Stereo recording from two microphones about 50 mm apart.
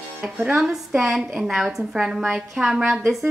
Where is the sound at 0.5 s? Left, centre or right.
Centre.